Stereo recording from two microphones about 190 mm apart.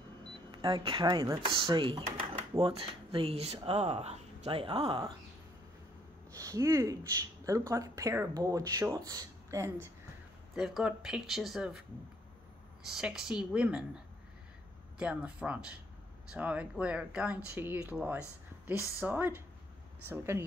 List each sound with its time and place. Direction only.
0.5 s speech: 25° right (ahead or behind)
6.3 s speech: 15° right (ahead or behind)
10.5 s speech: centre (ahead or behind)
12.8 s speech: centre (ahead or behind)
15.0 s speech: 5° right (ahead or behind)